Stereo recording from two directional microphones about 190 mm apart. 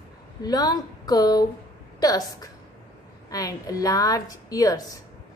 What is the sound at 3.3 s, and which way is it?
A woman's voice, 20° left (ahead or behind).